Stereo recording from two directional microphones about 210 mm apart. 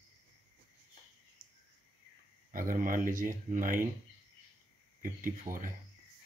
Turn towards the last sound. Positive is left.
turn(degrees=-40)  # may be behind; listen again after turning